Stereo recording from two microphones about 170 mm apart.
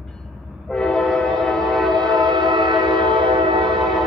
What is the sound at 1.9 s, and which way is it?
Train, 25° right (ahead or behind).